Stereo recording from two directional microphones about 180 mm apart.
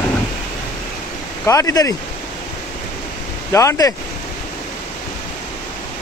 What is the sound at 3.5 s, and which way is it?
Speech, 15° left (ahead or behind).